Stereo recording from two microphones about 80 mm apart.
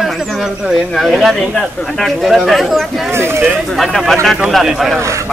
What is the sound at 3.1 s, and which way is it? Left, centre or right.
Speech, right.